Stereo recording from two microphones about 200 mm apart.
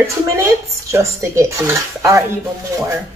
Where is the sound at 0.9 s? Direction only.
15° right (ahead or behind).